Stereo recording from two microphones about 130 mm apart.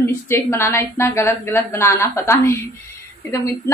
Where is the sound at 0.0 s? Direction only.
20° left (ahead or behind).